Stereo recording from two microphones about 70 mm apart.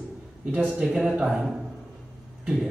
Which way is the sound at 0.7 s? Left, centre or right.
Centre.